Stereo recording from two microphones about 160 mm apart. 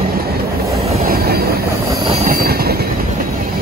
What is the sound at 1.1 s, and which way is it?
Train, 70° right (ahead or behind).